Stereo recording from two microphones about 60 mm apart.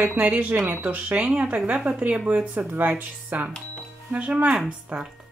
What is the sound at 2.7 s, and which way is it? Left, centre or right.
Speech, right.